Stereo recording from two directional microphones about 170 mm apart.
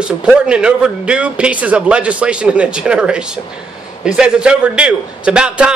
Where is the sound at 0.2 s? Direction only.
5° right (ahead or behind).